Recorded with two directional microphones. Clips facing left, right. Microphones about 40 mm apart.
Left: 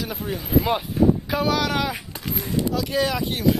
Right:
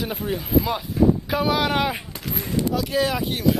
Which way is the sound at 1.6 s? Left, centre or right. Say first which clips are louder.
Right 2 dB; right.